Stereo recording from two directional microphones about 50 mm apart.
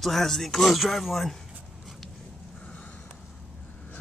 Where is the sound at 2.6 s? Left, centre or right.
Left.